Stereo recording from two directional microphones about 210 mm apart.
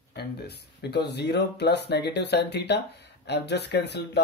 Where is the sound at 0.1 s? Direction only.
50° left (ahead or behind).